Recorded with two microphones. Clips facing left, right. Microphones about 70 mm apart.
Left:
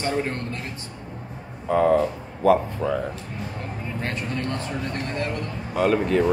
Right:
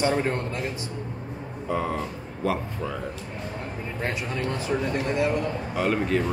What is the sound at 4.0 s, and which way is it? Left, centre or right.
A man's voice, centre.